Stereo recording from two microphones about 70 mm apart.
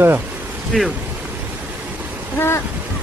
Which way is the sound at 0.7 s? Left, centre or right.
Centre.